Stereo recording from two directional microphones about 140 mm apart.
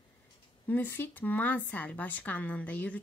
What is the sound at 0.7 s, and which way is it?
Speech, 15° left (ahead or behind).